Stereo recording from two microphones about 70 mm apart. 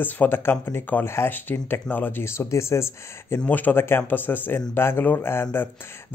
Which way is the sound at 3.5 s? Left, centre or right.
Left.